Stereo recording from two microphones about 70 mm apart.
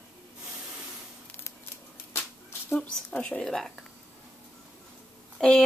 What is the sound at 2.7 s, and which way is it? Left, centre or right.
Speech, centre.